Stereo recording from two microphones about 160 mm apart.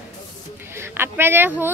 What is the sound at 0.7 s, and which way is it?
Speech, 15° right (ahead or behind).